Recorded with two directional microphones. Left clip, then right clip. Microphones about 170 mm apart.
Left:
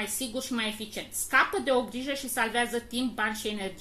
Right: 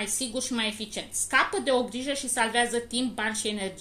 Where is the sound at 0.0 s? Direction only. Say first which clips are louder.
Right 2 dB; 40° right (ahead or behind).